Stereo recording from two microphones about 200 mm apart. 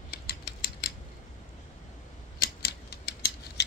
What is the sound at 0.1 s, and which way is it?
Scissors, 50° left (ahead or behind).